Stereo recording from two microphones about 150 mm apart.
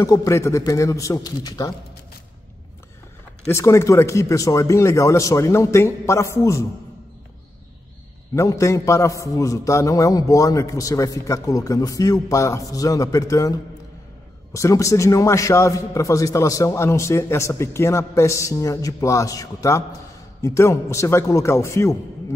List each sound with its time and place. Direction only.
0.0 s a man's voice: 20° left (ahead or behind)
3.4 s a man's voice: 20° left (ahead or behind)
8.4 s a man's voice: 20° left (ahead or behind)